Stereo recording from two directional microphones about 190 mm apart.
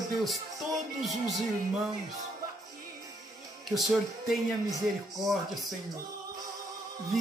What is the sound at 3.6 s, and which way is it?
Speech, centre (ahead or behind).